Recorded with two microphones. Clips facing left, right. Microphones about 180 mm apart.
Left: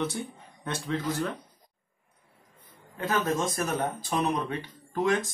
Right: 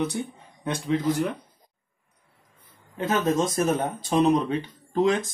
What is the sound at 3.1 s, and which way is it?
Speech, 25° right (ahead or behind).